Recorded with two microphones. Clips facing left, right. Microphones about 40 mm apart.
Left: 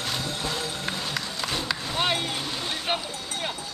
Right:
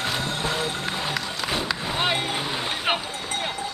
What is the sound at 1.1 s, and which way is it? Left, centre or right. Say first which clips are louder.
Run: right 3 dB; centre.